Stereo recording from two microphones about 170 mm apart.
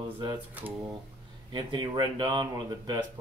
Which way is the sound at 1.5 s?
25° right (ahead or behind).